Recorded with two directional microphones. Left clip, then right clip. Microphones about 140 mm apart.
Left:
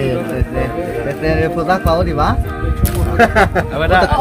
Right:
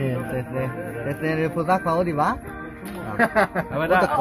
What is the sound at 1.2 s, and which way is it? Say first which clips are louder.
Speech: left 7 dB; 50° right (ahead or behind).